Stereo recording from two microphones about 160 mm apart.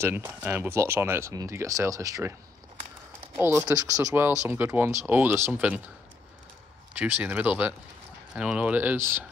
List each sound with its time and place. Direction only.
0.0 s speech: 15° right (ahead or behind)
3.3 s speech: 15° right (ahead or behind)
7.0 s speech: 10° right (ahead or behind)